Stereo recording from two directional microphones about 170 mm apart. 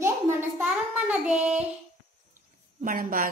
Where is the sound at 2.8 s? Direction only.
50° right (ahead or behind).